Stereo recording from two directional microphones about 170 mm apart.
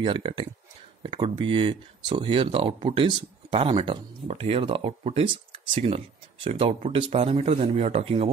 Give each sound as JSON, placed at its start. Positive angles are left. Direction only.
{"t": 0.0, "sound": "speech", "side_deg": -30}